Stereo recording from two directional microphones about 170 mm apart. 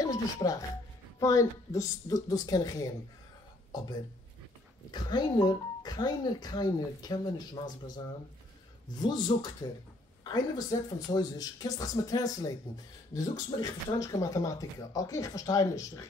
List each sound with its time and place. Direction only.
0.0 s speech: 20° left (ahead or behind)
4.9 s speech: 25° left (ahead or behind)